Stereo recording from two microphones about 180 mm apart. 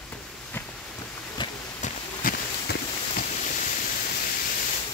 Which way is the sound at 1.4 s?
25° left (ahead or behind).